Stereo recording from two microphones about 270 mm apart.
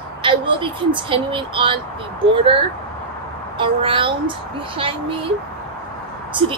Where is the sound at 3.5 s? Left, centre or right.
Centre.